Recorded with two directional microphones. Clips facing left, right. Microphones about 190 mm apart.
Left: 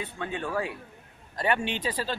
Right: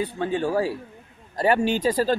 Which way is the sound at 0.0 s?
30° right (ahead or behind).